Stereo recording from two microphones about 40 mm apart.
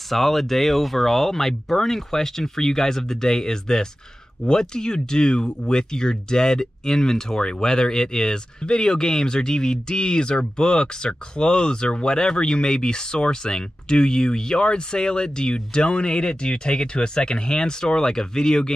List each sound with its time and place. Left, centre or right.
0.1 s speech: centre